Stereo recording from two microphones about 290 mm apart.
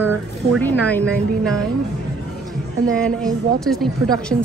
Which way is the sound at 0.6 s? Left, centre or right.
Centre.